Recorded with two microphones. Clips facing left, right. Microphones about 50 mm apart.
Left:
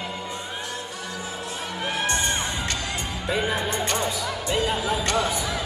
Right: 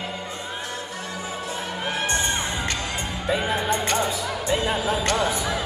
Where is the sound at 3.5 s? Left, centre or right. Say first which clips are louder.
Right 2 dB; right.